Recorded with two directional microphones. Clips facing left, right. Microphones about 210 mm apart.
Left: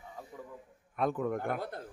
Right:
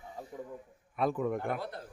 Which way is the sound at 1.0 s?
Centre (ahead or behind).